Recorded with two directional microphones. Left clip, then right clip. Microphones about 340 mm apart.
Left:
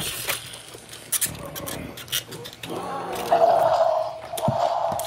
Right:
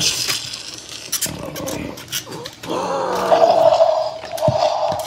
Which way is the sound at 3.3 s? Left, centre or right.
Right.